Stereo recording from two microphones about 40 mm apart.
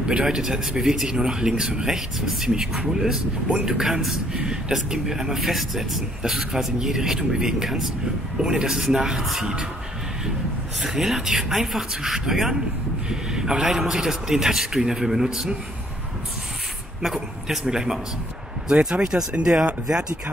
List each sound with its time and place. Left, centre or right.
0.2 s speech: centre
10.8 s speech: centre
17.0 s speech: centre